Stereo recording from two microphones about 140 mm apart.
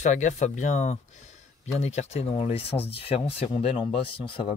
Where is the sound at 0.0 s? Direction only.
60° left (ahead or behind).